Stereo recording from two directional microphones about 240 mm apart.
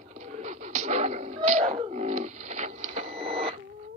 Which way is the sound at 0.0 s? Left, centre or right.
Right.